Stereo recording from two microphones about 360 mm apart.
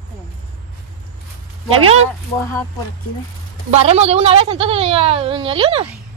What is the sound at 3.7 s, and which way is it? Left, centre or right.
A woman's voice, centre.